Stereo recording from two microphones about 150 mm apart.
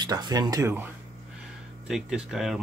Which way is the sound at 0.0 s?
25° right (ahead or behind).